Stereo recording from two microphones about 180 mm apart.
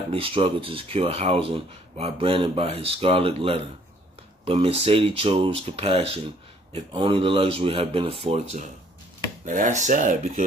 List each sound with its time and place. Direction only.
0.1 s speech: 30° right (ahead or behind); by 10.4 s 45° right (ahead or behind)